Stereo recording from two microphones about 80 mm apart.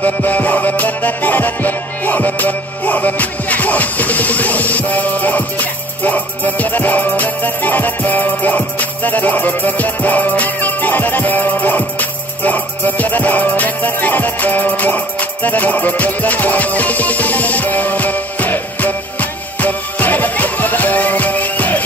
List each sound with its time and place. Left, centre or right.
0.0 s music: centre